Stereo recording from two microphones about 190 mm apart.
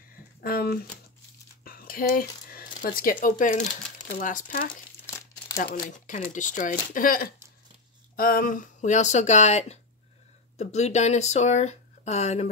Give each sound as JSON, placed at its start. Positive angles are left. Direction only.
{"t": 0.4, "sound": "speech", "side_deg": 50}
{"t": 5.0, "sound": "crumpling", "side_deg": 15}
{"t": 6.3, "sound": "speech", "side_deg": 40}